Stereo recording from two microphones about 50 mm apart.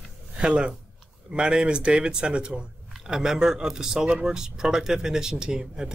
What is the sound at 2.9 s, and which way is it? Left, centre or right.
Speech, centre.